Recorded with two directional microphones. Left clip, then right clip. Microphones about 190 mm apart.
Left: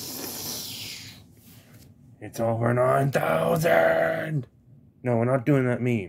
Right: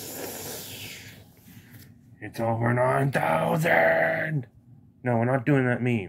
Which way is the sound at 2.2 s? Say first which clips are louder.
Left 1 dB; 25° left (ahead or behind).